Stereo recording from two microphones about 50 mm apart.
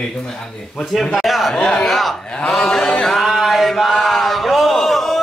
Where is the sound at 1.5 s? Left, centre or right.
Centre.